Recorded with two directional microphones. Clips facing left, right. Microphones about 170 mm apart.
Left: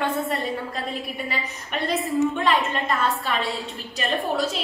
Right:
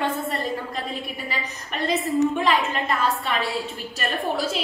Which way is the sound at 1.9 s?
Centre (ahead or behind).